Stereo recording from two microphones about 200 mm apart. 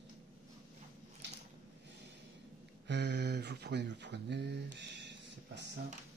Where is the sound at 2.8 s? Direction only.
60° right (ahead or behind).